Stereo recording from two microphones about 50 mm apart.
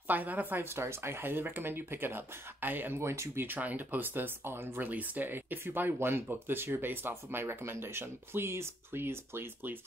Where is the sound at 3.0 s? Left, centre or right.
Right.